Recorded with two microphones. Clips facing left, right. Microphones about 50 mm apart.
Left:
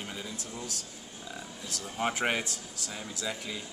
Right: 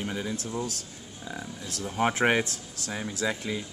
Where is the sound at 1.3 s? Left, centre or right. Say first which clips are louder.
Right 4 dB; right.